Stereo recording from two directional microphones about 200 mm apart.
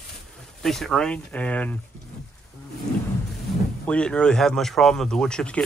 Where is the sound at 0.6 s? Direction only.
Centre (ahead or behind).